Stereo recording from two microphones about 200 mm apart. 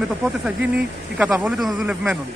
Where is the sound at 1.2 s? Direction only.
5° right (ahead or behind).